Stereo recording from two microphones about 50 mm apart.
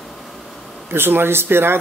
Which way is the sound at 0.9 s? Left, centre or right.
Right.